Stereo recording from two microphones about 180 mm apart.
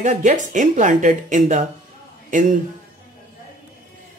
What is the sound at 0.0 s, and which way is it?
Speech, 45° right (ahead or behind).